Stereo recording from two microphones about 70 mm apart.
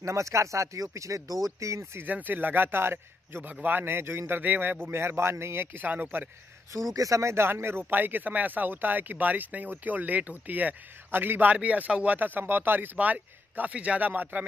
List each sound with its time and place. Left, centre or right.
0.0 s speech: right
2.0 s a man's voice: right
6.9 s speech: right